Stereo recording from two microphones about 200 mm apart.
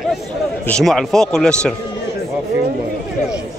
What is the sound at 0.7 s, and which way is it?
Speech, 5° left (ahead or behind).